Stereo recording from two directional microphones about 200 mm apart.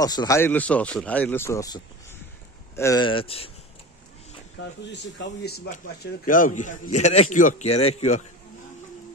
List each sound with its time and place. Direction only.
0.0 s speech: 20° left (ahead or behind)
4.6 s speech: 60° left (ahead or behind)
6.2 s a man's voice: 40° left (ahead or behind)